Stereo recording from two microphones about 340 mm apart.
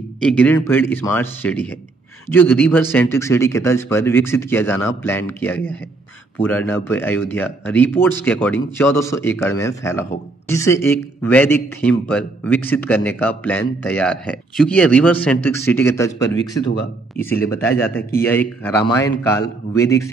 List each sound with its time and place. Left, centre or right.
0.2 s a man's voice: centre